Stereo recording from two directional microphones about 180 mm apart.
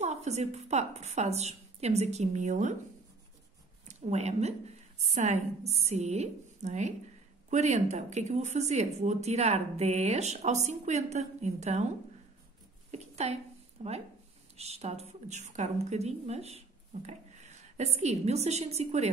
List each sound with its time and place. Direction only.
0.0 s speech: 40° right (ahead or behind)
3.8 s a woman's voice: 35° right (ahead or behind)
12.9 s a sound: 35° right (ahead or behind)
13.8 s a woman's voice: 40° right (ahead or behind)